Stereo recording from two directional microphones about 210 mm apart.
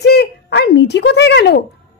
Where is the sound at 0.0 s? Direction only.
50° left (ahead or behind).